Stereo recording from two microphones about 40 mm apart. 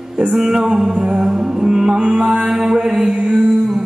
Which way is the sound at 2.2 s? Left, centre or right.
Centre.